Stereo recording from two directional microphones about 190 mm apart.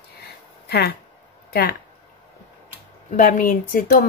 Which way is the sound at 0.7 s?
60° left (ahead or behind).